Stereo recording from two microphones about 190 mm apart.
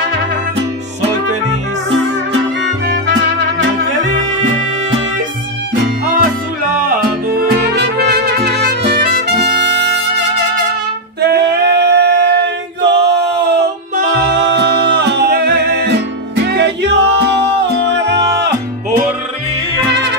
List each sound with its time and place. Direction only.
3.5 s music: 40° right (ahead or behind)
6.9 s music: 50° right (ahead or behind)
11.1 s singing: 60° right (ahead or behind)
12.8 s male singing: 65° right (ahead or behind)
13.9 s music: 60° right (ahead or behind)